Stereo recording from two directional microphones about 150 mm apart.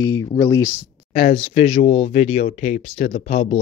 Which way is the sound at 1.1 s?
45° left (ahead or behind).